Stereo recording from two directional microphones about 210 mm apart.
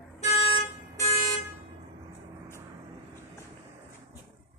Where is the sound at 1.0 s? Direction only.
30° left (ahead or behind).